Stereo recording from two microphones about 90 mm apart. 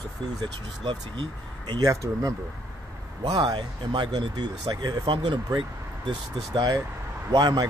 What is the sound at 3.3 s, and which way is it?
A man's voice, 60° right (ahead or behind).